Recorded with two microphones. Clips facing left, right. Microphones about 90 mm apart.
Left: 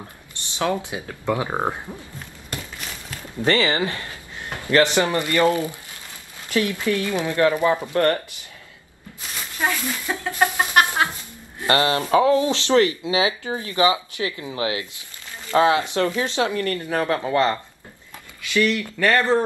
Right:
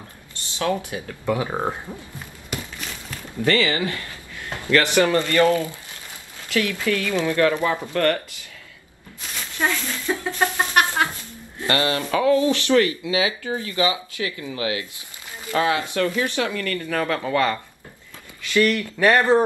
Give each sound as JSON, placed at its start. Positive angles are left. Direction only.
{"t": 0.6, "sound": "speech", "side_deg": 20}
{"t": 3.4, "sound": "speech", "side_deg": 25}
{"t": 9.6, "sound": "a sound", "side_deg": 15}
{"t": 11.6, "sound": "speech", "side_deg": 30}
{"t": 18.9, "sound": "speech", "side_deg": -15}